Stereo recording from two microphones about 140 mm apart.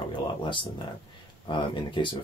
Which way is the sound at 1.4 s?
35° left (ahead or behind).